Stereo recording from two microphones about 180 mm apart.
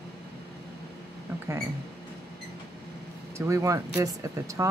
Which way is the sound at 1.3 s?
15° right (ahead or behind).